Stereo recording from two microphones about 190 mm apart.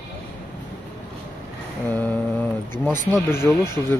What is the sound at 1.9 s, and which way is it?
Speech, 10° left (ahead or behind).